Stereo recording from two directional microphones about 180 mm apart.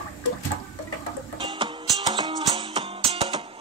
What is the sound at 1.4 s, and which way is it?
Music, 30° right (ahead or behind).